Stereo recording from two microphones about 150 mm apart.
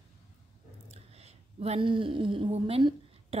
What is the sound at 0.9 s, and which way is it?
Speech, 45° right (ahead or behind).